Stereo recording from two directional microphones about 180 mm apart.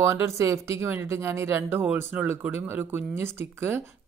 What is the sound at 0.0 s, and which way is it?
Speech, 15° right (ahead or behind).